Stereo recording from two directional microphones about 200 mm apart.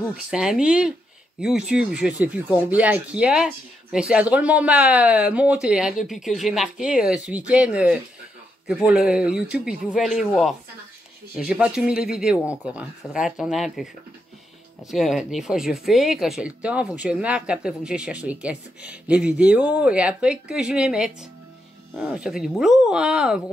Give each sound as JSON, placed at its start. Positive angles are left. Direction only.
{"t": 0.3, "sound": "speech", "side_deg": -5}
{"t": 14.9, "sound": "speech", "side_deg": 0}